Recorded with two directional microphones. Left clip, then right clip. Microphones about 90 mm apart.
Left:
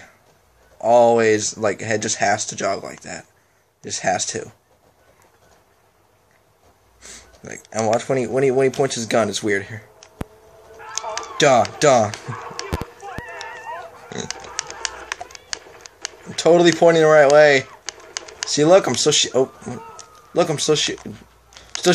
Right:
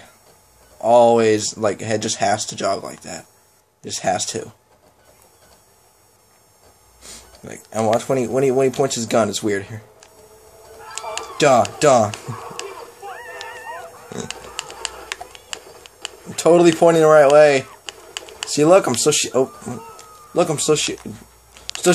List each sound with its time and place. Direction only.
0.7 s speech: 10° right (ahead or behind)
7.0 s a sound: 10° right (ahead or behind)
7.7 s speech: 10° right (ahead or behind)
11.3 s speech: 10° right (ahead or behind)
12.4 s chicken: 5° left (ahead or behind)
13.0 s a sound: 25° left (ahead or behind)
13.5 s honk: 25° left (ahead or behind)
16.3 s speech: 10° right (ahead or behind)